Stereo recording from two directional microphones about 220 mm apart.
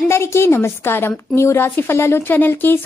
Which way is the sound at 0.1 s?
10° left (ahead or behind).